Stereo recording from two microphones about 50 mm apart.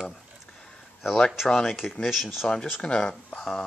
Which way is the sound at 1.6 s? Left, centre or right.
Centre.